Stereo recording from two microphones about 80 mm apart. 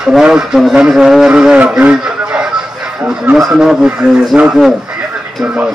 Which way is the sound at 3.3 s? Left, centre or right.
Centre.